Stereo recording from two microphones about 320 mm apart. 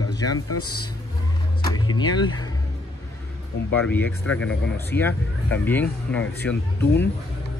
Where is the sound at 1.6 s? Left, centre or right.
Centre.